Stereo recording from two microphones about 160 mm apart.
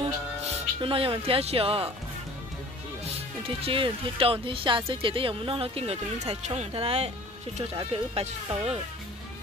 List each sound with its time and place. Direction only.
0.7 s speech: 35° right (ahead or behind)
3.4 s speech: 35° right (ahead or behind)